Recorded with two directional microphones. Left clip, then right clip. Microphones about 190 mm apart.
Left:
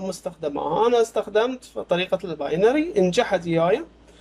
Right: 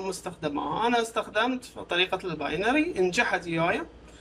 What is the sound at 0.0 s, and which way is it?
A man's voice, 35° left (ahead or behind).